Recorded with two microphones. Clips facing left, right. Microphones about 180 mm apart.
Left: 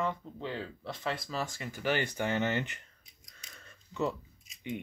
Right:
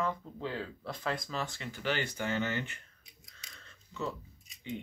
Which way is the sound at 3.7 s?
15° left (ahead or behind).